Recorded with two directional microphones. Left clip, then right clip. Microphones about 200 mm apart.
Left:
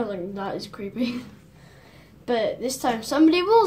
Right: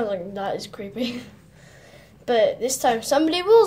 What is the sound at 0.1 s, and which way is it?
A woman's voice, 40° right (ahead or behind).